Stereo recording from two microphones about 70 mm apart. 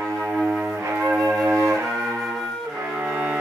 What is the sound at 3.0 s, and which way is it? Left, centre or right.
Music, centre.